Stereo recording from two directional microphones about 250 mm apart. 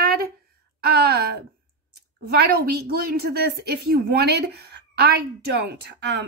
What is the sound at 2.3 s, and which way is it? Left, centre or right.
A woman's voice, right.